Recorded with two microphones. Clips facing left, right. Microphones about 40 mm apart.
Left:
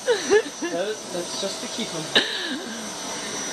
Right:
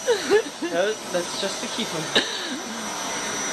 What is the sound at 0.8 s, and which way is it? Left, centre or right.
Speech, right.